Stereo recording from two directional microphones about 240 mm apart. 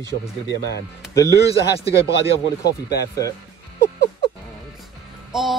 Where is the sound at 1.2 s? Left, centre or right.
Centre.